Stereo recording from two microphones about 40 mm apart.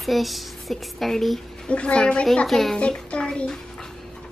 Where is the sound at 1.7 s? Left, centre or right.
Left.